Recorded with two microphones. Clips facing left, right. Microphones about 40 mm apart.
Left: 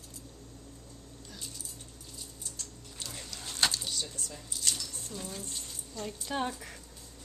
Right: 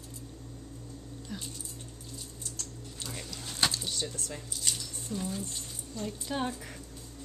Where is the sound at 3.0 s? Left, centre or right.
Centre.